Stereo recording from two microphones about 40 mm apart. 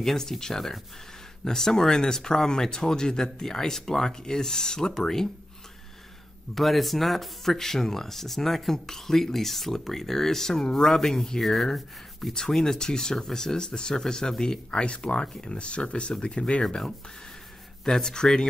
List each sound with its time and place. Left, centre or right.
0.0 s speech: centre
6.5 s speech: centre; by 16.6 s left
17.8 s speech: centre